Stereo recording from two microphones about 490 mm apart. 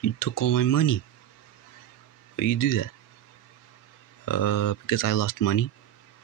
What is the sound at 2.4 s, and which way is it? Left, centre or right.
Speech, left.